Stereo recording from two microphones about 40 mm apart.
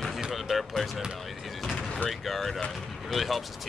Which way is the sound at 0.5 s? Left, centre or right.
Centre.